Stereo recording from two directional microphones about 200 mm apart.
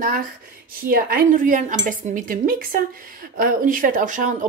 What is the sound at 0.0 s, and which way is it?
Speech, 45° right (ahead or behind).